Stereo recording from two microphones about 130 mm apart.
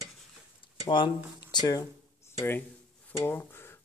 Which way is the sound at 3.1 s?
15° left (ahead or behind).